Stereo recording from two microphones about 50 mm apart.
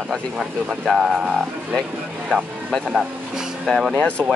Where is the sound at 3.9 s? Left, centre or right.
Left.